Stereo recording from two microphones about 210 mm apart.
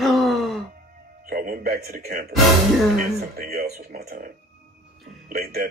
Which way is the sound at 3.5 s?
45° right (ahead or behind).